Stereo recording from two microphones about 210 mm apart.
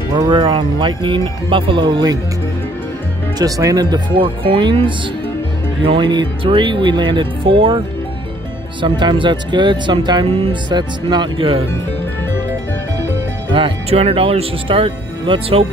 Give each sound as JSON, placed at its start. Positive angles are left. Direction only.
{"t": 0.1, "sound": "speech", "side_deg": -20}
{"t": 3.3, "sound": "speech", "side_deg": -15}
{"t": 8.8, "sound": "speech", "side_deg": -20}
{"t": 13.5, "sound": "speech", "side_deg": -25}